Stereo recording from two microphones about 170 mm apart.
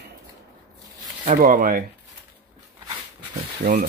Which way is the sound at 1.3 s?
55° right (ahead or behind).